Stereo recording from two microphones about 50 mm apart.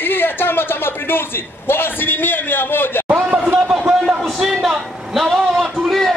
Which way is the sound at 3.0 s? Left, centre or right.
Right.